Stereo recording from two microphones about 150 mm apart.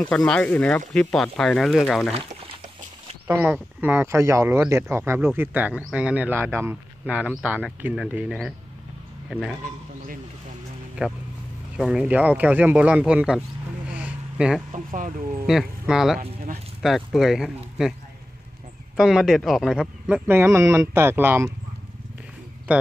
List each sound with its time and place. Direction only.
0.0 s speech: 5° left (ahead or behind)
3.3 s speech: 10° right (ahead or behind)
9.3 s speech: 5° left (ahead or behind)
11.0 s speech: 5° right (ahead or behind)
13.9 s a sound: 5° right (ahead or behind)
14.7 s speech: 60° right (ahead or behind)
15.4 s speech: 5° right (ahead or behind)
18.9 s speech: centre (ahead or behind)
22.7 s speech: 10° right (ahead or behind)